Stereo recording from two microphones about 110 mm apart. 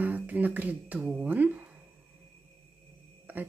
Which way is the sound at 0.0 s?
15° right (ahead or behind).